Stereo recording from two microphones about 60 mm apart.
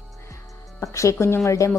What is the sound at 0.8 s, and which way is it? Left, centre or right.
Speech, left.